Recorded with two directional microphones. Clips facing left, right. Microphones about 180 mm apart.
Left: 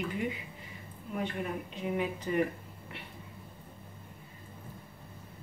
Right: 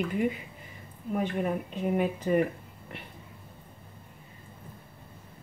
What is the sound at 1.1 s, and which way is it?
Speech, 50° right (ahead or behind).